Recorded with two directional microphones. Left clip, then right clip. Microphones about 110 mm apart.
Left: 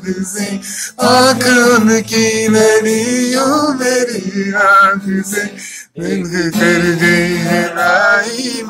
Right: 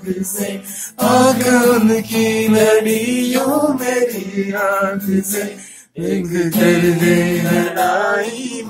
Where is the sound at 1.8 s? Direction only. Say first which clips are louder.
Left 4 dB; 15° right (ahead or behind).